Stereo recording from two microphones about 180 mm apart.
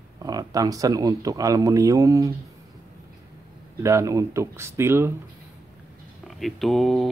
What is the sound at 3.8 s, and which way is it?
Speech, 15° right (ahead or behind).